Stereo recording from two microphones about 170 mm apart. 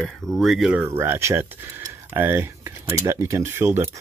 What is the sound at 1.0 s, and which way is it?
Speech, 15° right (ahead or behind).